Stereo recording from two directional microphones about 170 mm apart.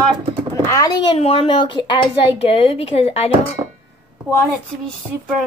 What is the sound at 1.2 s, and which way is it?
Speech, 35° left (ahead or behind).